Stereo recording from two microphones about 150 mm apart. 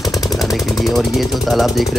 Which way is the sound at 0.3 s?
Centre (ahead or behind).